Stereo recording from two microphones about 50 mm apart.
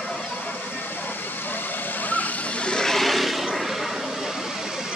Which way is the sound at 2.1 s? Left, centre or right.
Left.